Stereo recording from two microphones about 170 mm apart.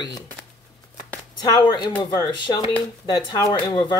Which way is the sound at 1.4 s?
25° left (ahead or behind).